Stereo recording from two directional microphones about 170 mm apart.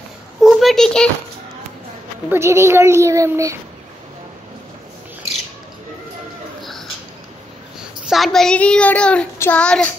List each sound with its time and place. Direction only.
0.4 s a sound: centre (ahead or behind)
2.2 s a child's voice: 15° right (ahead or behind)
7.8 s a woman's voice: centre (ahead or behind)